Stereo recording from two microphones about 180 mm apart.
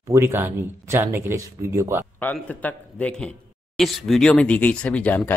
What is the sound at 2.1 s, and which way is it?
A man's voice, 10° left (ahead or behind).